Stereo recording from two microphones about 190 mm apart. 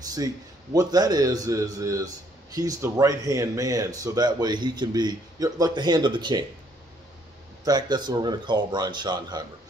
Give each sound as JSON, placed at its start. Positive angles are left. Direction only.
{"t": 0.7, "sound": "speech", "side_deg": -20}
{"t": 7.6, "sound": "speech", "side_deg": -20}